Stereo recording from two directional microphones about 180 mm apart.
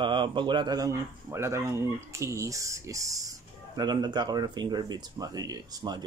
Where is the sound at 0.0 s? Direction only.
25° right (ahead or behind).